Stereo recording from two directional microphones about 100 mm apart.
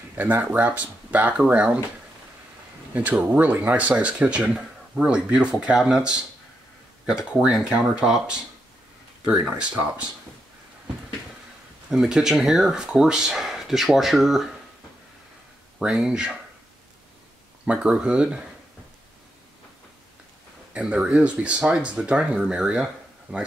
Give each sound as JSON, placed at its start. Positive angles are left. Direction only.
{"t": 0.1, "sound": "speech", "side_deg": -20}
{"t": 2.9, "sound": "speech", "side_deg": -15}
{"t": 11.9, "sound": "speech", "side_deg": -5}
{"t": 15.8, "sound": "speech", "side_deg": -5}
{"t": 17.6, "sound": "speech", "side_deg": -10}
{"t": 20.7, "sound": "speech", "side_deg": -10}